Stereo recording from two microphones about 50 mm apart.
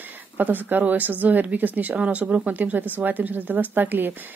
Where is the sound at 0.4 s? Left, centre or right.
Right.